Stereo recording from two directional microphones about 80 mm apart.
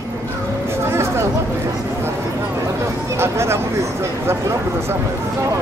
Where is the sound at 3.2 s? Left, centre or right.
Right.